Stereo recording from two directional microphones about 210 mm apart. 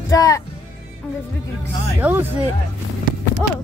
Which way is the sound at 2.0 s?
5° right (ahead or behind).